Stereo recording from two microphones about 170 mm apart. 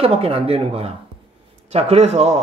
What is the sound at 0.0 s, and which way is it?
Speech, 35° right (ahead or behind).